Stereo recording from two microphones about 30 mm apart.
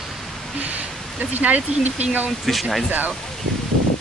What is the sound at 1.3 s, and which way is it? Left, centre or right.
Speech, right.